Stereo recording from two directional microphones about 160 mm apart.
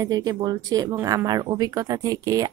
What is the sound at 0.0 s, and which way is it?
A woman's voice, 25° right (ahead or behind).